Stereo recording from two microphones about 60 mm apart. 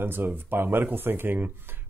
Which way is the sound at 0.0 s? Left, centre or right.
Right.